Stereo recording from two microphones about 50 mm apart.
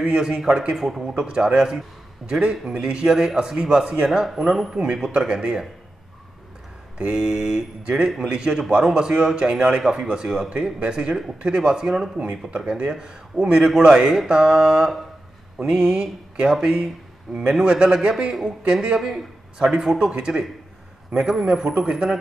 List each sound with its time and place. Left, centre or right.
0.0 s a man's voice: centre
7.0 s a man's voice: centre